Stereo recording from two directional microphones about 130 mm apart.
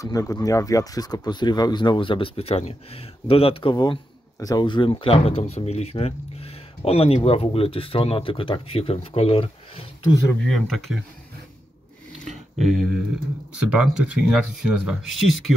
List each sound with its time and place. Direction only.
0.0 s speech: 25° left (ahead or behind); by 9.8 s 45° left (ahead or behind)
10.4 s speech: centre (ahead or behind)
12.3 s a sound: centre (ahead or behind)
13.6 s speech: 10° right (ahead or behind)